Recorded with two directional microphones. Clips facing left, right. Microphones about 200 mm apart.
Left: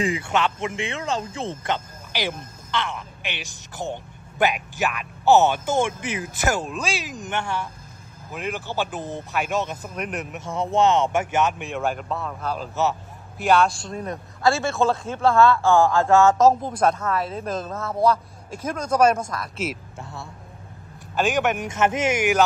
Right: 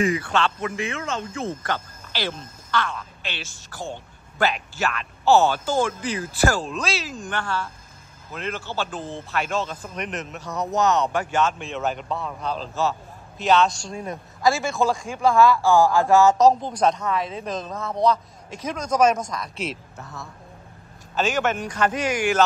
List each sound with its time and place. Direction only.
0.0 s a woman's voice: 25° left (ahead or behind)
6.6 s a woman's voice: 5° left (ahead or behind)
9.8 s a woman's voice: 5° left (ahead or behind)
10.4 s a woman's voice: 25° left (ahead or behind); by 13.9 s 10° left (ahead or behind)
14.4 s a man's voice: 15° right (ahead or behind)
16.3 s a woman's voice: centre (ahead or behind)
20.0 s speech: 30° left (ahead or behind)
21.1 s speech: 15° left (ahead or behind)